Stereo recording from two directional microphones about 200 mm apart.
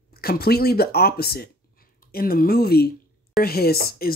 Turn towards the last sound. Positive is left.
turn(degrees=50)  # may be behind; listen again after turning